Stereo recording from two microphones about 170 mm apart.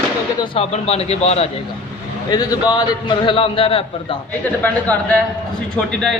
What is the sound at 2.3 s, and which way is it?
A man's voice, 25° left (ahead or behind).